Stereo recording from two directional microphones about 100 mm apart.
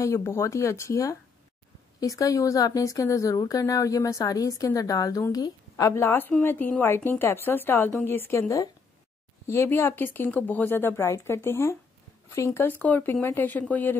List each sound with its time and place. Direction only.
0.0 s a woman's voice: 25° left (ahead or behind)